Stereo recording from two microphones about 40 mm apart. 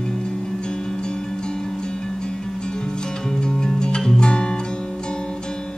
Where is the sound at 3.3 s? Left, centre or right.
Centre.